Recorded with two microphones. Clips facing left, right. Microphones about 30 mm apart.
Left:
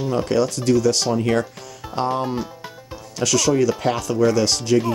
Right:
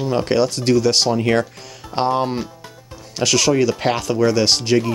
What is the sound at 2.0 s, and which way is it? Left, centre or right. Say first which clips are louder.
Speech: right 3 dB; right.